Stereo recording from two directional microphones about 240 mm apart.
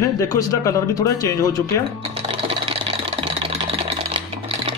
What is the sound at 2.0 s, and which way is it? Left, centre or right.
Sewing machine, right.